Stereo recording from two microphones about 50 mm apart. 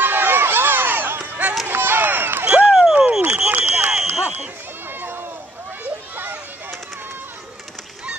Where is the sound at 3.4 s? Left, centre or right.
Right.